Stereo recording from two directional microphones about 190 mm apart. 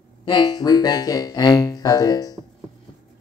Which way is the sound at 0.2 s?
20° left (ahead or behind).